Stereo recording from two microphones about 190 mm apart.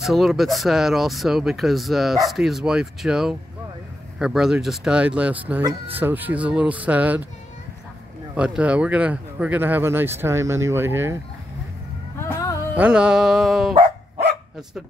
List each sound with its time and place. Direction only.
0.0 s speech: centre (ahead or behind)
5.6 s speech: 20° right (ahead or behind)
5.9 s speech: 10° right (ahead or behind)
8.4 s speech: 5° right (ahead or behind)
12.2 s a sound: 15° left (ahead or behind)
12.7 s speech: 5° right (ahead or behind)